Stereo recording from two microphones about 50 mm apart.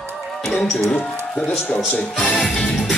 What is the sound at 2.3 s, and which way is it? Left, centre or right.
Music, centre.